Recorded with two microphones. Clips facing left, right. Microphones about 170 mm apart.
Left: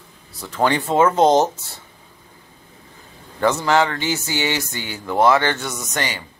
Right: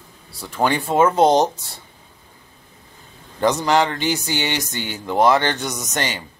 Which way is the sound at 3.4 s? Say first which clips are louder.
Even; 15° right (ahead or behind).